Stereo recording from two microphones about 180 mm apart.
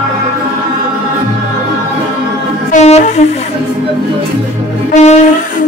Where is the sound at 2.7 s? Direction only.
40° left (ahead or behind).